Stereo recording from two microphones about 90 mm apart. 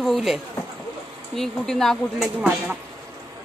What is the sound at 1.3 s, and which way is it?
Speech, 5° left (ahead or behind).